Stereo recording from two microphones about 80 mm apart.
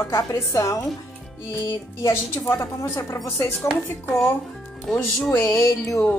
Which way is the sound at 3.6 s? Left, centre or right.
Centre.